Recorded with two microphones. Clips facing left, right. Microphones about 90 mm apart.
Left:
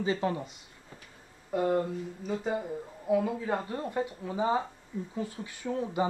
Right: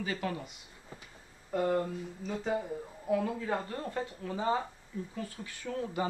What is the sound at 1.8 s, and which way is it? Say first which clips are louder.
A man's voice: left 3 dB; 5° left (ahead or behind).